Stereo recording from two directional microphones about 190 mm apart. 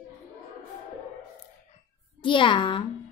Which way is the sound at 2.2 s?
25° left (ahead or behind).